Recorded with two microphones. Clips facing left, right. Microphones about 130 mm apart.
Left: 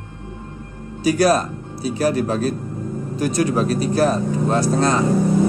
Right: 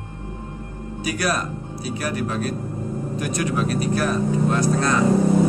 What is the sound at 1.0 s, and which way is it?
A man's voice, 30° left (ahead or behind).